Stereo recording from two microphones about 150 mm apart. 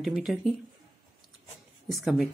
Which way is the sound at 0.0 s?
Centre (ahead or behind).